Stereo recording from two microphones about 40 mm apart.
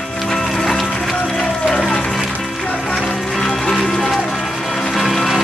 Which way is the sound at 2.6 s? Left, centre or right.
Left.